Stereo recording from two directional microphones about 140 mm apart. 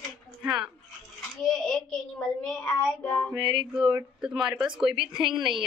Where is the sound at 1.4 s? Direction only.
Centre (ahead or behind).